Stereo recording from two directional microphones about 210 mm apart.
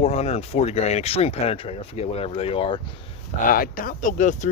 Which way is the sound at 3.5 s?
40° left (ahead or behind).